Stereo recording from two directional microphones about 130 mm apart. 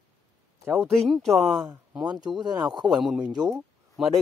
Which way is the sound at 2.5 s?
30° right (ahead or behind).